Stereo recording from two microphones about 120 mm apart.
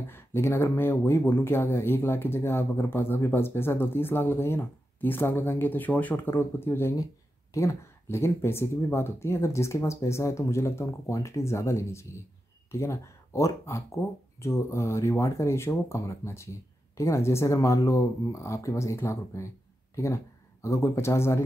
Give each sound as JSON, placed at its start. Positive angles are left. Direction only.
{"t": 0.0, "sound": "speech", "side_deg": 20}